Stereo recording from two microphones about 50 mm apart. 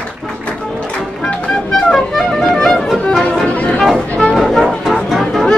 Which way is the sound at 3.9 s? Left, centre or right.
Left.